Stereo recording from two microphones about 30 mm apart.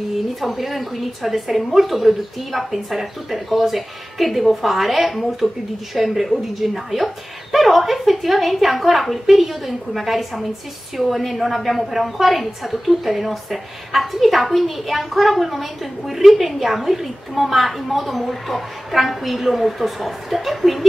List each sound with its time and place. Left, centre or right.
0.4 s a woman's voice: centre